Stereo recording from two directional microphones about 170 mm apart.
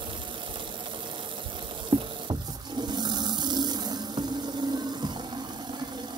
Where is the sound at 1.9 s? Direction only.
30° right (ahead or behind).